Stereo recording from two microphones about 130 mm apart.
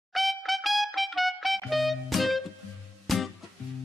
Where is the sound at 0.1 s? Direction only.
Centre (ahead or behind).